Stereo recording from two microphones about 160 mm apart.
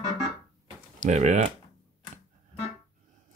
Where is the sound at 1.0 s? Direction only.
45° right (ahead or behind).